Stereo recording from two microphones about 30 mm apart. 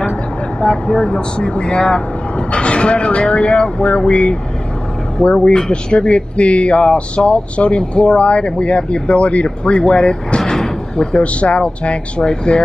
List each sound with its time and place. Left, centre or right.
0.6 s speech: left
10.4 s music: centre
11.1 s speech: left
12.2 s speech: left